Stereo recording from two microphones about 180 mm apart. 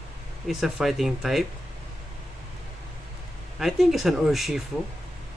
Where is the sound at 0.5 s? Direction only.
Centre (ahead or behind).